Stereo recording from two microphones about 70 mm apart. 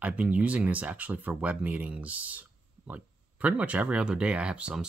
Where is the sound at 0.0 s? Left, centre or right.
Centre.